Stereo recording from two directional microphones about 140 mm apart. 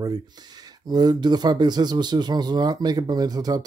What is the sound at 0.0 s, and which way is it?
Speech, 30° right (ahead or behind).